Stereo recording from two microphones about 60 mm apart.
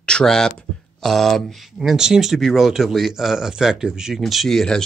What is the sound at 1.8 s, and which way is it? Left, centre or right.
Speech, centre.